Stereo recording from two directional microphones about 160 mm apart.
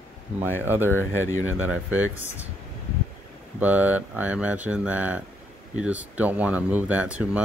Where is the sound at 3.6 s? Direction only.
10° right (ahead or behind).